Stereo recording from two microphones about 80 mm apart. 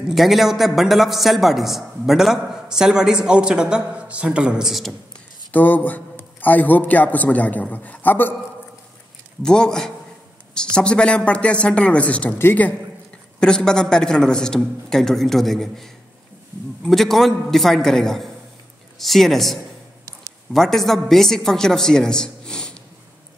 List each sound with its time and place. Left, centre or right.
0.1 s a man's voice: centre
5.5 s a man's voice: left
9.4 s a man's voice: centre; by 12.7 s left
13.4 s a man's voice: centre